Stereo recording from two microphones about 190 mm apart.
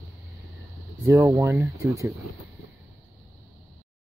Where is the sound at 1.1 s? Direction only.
15° right (ahead or behind).